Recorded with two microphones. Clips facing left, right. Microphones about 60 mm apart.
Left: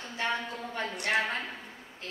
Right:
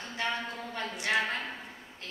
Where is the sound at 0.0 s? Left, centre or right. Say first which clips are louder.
Left 1 dB; left.